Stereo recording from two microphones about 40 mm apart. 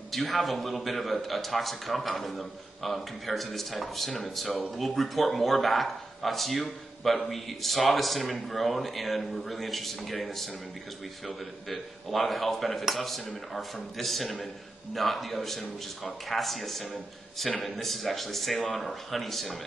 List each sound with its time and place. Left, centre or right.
0.1 s a man's voice: centre